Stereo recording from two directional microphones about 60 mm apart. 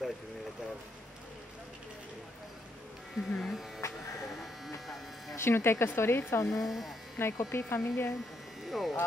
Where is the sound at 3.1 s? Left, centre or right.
Centre.